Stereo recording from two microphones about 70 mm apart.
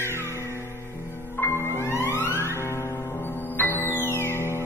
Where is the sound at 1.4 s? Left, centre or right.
Left.